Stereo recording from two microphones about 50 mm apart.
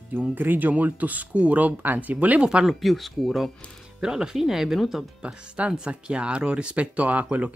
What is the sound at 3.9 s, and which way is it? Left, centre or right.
Speech, centre.